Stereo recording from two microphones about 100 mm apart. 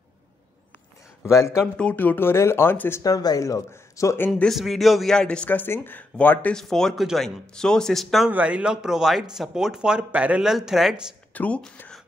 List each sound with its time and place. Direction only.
1.2 s speech: 30° left (ahead or behind)
1.8 s speech: 15° left (ahead or behind)
3.0 s speech: 40° left (ahead or behind)
4.5 s speech: centre (ahead or behind); by 6.5 s 15° left (ahead or behind)
6.5 s speech: 5° left (ahead or behind)
8.3 s speech: 15° right (ahead or behind)
11.3 s speech: 15° left (ahead or behind)